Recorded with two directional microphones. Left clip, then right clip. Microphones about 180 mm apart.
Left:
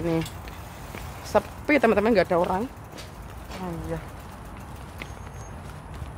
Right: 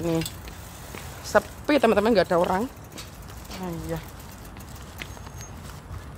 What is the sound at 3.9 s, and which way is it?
Speech, 40° right (ahead or behind).